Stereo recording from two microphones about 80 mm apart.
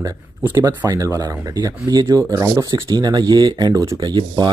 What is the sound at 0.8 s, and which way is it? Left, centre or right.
Speech, right.